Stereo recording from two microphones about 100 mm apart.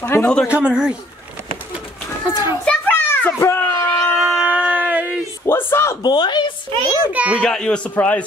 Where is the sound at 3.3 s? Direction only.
25° left (ahead or behind).